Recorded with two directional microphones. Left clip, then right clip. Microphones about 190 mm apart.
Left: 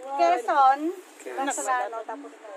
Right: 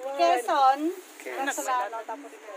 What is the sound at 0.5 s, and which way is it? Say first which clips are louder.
Speech: left 4 dB; 10° right (ahead or behind).